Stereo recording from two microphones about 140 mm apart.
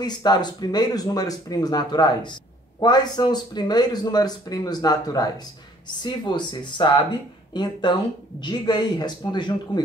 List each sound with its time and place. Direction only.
0.0 s speech: 30° left (ahead or behind)